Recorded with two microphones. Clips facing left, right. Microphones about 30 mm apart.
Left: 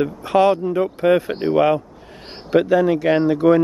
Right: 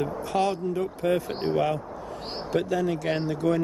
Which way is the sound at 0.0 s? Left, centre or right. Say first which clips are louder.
Left 9 dB; left.